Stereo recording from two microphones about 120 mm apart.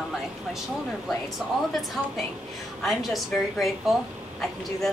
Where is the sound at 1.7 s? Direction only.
Centre (ahead or behind).